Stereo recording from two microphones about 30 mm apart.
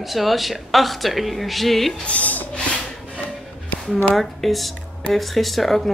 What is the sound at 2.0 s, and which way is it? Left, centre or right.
Speech, left.